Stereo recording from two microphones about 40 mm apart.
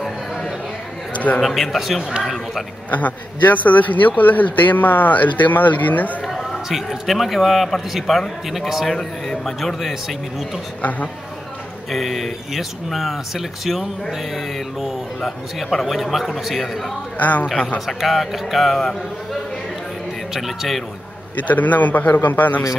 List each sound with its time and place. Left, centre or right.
1.1 s a sound: left
1.4 s speech: centre
2.9 s speech: left
6.2 s a sound: centre
6.7 s speech: centre
8.9 s a man's voice: centre
9.6 s speech: centre
10.8 s a man's voice: left
11.9 s speech: centre
17.2 s speech: left
17.7 s speech: centre
20.3 s speech: centre
21.4 s speech: left